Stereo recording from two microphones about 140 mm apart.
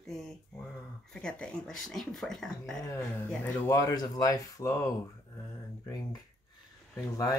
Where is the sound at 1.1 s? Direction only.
5° left (ahead or behind).